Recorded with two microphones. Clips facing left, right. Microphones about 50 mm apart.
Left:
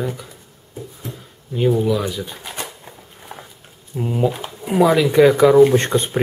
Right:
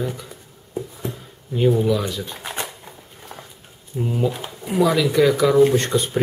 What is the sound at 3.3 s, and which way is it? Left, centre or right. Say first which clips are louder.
Patter: left 2 dB; centre.